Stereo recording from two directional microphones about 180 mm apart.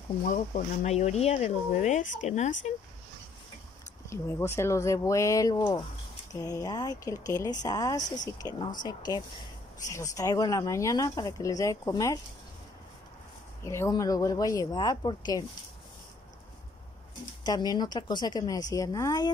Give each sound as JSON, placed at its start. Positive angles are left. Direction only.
{"t": 0.2, "sound": "speech", "side_deg": 45}
{"t": 4.1, "sound": "speech", "side_deg": 15}
{"t": 13.7, "sound": "speech", "side_deg": 15}
{"t": 17.4, "sound": "speech", "side_deg": 20}